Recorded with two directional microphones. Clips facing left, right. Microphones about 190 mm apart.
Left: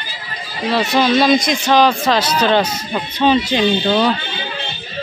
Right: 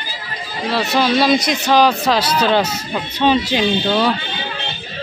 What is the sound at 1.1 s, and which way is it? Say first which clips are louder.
A man's voice: left 1 dB; 10° right (ahead or behind).